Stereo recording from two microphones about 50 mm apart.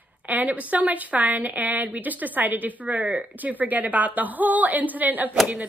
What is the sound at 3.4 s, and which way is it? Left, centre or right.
Speech, right.